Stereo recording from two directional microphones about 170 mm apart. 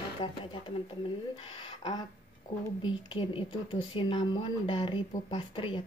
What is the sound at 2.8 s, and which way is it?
Speech, 30° left (ahead or behind).